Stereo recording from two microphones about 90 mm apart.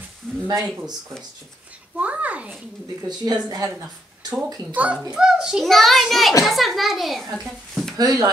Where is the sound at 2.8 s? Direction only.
45° right (ahead or behind).